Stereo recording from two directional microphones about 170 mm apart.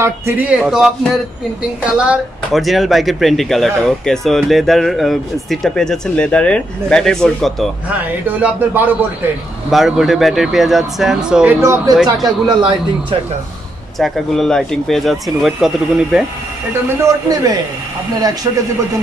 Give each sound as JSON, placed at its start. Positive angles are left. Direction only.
{"t": 0.0, "sound": "speech", "side_deg": -10}
{"t": 7.9, "sound": "a man's voice", "side_deg": -10}
{"t": 12.4, "sound": "a man's voice", "side_deg": -25}
{"t": 13.9, "sound": "speech", "side_deg": 0}
{"t": 17.0, "sound": "a man's voice", "side_deg": -20}